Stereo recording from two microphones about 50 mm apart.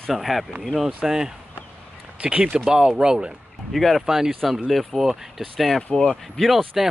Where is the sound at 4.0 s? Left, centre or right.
Centre.